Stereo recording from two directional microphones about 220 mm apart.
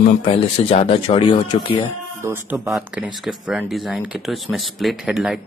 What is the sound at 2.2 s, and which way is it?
Speech, 10° right (ahead or behind).